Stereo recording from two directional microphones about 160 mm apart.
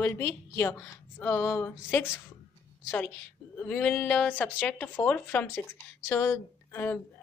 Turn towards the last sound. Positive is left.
turn(degrees=10)  # may be behind; listen again after turning